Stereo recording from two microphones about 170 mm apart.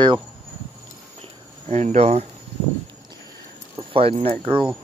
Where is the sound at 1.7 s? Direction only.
40° right (ahead or behind).